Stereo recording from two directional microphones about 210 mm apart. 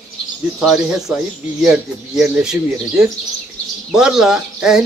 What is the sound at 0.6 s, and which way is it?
Speech, centre (ahead or behind).